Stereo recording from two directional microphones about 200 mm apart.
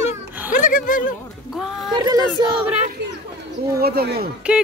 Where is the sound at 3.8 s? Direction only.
50° right (ahead or behind).